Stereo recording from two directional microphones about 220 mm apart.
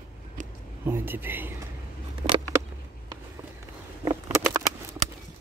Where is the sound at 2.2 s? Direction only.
20° right (ahead or behind).